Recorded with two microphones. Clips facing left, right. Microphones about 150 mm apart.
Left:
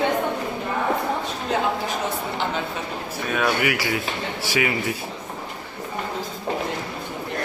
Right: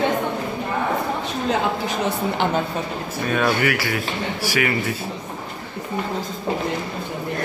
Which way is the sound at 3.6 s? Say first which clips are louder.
Right 1 dB; 20° left (ahead or behind).